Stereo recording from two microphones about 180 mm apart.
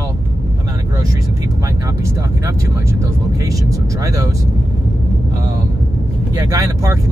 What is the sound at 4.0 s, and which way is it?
Speech, 20° right (ahead or behind).